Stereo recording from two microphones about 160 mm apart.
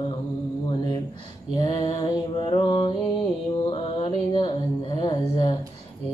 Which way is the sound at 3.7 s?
30° left (ahead or behind).